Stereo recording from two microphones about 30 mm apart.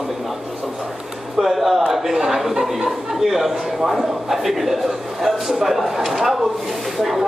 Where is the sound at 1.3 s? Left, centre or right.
Centre.